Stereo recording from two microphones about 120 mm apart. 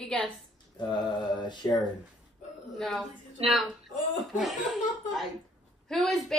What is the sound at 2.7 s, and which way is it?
Speech, 5° left (ahead or behind).